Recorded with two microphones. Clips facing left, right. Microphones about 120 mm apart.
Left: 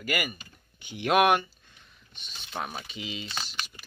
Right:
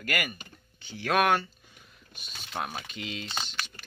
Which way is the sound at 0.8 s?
20° left (ahead or behind).